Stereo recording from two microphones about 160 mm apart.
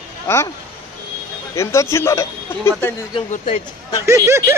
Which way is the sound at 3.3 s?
50° left (ahead or behind).